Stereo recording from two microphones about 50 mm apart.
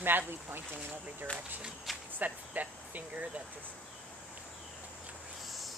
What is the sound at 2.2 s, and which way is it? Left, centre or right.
Speech, right.